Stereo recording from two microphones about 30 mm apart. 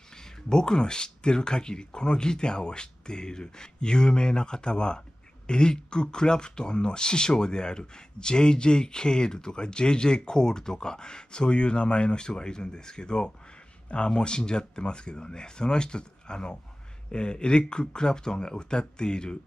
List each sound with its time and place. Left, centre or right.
0.2 s speech: left